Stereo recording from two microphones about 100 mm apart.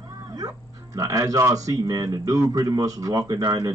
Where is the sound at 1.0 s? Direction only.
35° right (ahead or behind).